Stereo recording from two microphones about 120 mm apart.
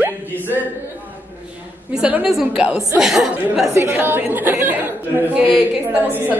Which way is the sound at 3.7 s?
20° right (ahead or behind).